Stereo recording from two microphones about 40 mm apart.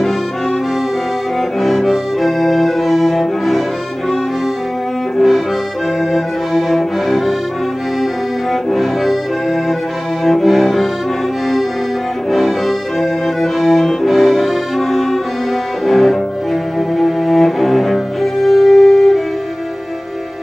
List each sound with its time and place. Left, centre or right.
1.6 s music: centre
5.1 s accordion: centre
6.1 s music: centre
8.6 s accordion: centre
10.2 s accordion: centre
12.3 s music: centre
16.9 s cello: centre